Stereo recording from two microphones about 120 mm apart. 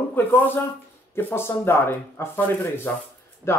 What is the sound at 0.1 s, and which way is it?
Speech, 15° left (ahead or behind).